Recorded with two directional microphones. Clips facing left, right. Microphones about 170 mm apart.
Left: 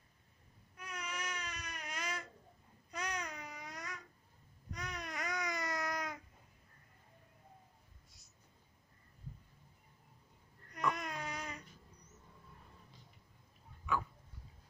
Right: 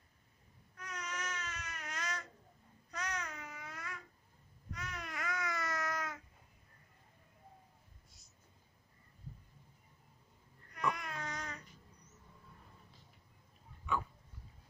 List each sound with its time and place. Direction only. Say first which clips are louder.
0.7 s baby cry: even; 10° left (ahead or behind)
2.9 s babbling: left 1 dB; 10° left (ahead or behind)
11.0 s baby cry: left 1 dB; 15° left (ahead or behind)